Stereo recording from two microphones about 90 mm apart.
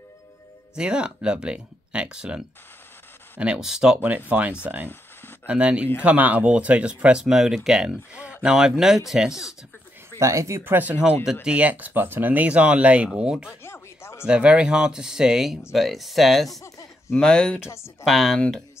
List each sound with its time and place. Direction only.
0.7 s speech: 10° right (ahead or behind)
10.1 s speech: 35° right (ahead or behind)
10.6 s speech: 20° right (ahead or behind)
13.7 s a sound: 30° left (ahead or behind)
14.2 s speech: 10° right (ahead or behind)
16.6 s chuckle: 35° left (ahead or behind)
17.2 s speech: 5° left (ahead or behind)